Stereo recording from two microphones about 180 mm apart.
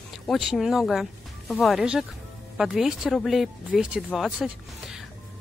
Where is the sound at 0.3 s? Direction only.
Centre (ahead or behind).